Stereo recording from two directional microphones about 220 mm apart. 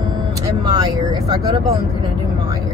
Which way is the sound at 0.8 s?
15° right (ahead or behind).